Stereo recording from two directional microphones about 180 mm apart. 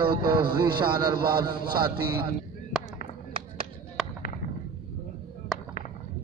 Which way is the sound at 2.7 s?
Centre (ahead or behind).